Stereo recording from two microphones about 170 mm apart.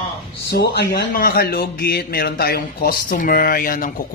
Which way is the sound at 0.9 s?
60° left (ahead or behind).